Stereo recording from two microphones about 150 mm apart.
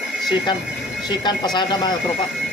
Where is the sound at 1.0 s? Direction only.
30° left (ahead or behind).